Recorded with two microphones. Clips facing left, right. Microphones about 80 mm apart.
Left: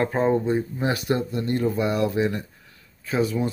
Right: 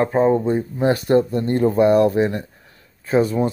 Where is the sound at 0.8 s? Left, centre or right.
Right.